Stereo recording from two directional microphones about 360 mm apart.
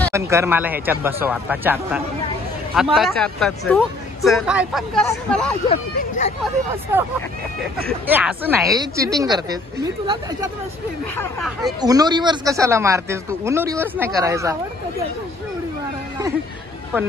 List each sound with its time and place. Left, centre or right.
0.1 s speech: centre
5.7 s speech: centre
6.7 s speech: centre
8.1 s speech: centre
11.1 s speech: centre
11.8 s speech: centre